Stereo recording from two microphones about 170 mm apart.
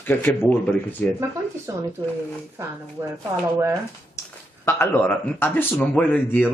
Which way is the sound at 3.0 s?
15° right (ahead or behind).